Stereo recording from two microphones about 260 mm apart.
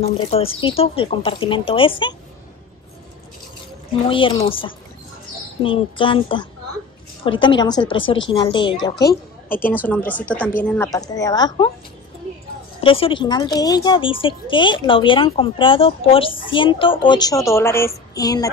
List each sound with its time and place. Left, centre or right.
0.0 s speech: left
4.1 s a woman's voice: left
9.1 s a woman's voice: centre
12.8 s speech: left